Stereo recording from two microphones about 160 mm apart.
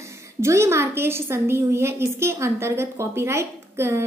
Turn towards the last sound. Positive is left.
turn(degrees=-15)  # may be behind; listen again after turning